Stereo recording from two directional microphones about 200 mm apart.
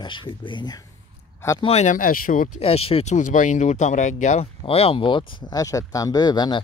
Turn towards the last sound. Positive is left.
turn(degrees=20)  # may be behind; listen again after turning